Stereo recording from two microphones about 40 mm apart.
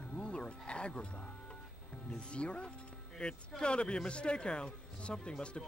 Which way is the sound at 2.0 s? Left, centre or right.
Left.